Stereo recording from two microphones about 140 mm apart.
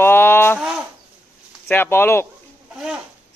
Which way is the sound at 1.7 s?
15° left (ahead or behind).